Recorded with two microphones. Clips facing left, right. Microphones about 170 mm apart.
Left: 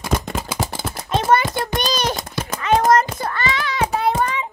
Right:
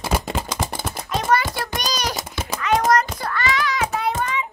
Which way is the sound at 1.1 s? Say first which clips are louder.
Left 3 dB; 25° left (ahead or behind).